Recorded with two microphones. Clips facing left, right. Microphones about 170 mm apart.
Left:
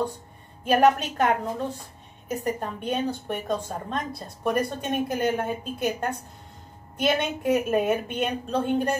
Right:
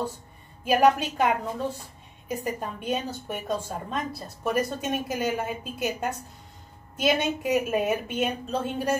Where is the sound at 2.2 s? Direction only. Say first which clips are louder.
Left 2 dB; 5° right (ahead or behind).